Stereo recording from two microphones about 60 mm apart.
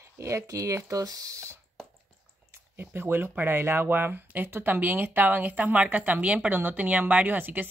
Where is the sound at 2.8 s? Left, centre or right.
Right.